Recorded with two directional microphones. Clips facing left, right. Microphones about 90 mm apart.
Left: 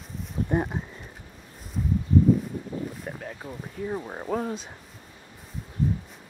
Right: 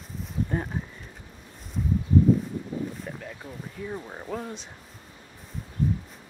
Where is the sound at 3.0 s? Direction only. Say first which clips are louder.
Left 1 dB; 15° left (ahead or behind).